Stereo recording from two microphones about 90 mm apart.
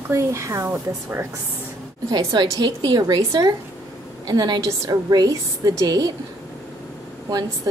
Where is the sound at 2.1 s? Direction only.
55° right (ahead or behind).